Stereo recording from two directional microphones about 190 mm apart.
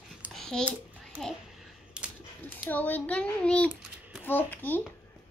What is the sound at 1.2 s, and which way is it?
Speech, centre (ahead or behind).